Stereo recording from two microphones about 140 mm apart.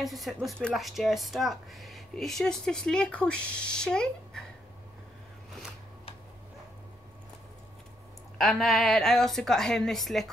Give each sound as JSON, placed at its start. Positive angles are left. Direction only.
{"t": 0.0, "sound": "speech", "side_deg": 0}
{"t": 8.4, "sound": "speech", "side_deg": 0}